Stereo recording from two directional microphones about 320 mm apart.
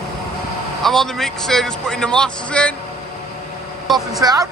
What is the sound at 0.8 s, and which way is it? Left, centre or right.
Speech, centre.